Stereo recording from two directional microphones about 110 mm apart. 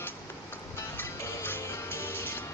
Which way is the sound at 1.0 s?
20° left (ahead or behind).